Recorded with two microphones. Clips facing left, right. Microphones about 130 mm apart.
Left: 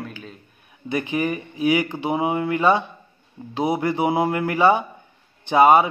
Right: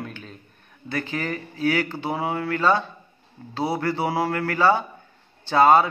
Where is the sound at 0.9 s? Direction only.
15° left (ahead or behind).